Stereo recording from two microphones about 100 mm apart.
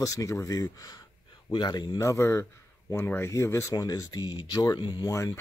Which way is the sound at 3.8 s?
40° left (ahead or behind).